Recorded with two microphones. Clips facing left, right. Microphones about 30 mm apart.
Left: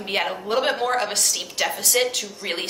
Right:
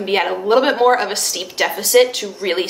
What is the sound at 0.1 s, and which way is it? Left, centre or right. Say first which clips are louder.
A woman's voice: right 8 dB; centre.